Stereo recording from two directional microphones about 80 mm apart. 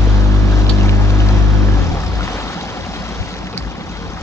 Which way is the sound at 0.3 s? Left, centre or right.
Left.